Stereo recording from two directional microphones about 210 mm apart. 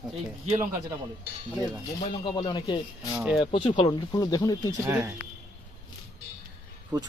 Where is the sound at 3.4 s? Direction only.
25° left (ahead or behind).